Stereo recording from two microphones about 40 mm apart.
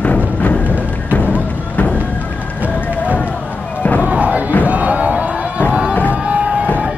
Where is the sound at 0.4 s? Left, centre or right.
Left.